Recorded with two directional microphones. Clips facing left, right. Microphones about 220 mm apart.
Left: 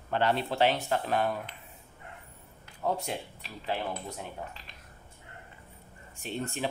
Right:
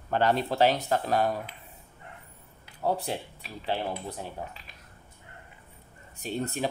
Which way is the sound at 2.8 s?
35° right (ahead or behind).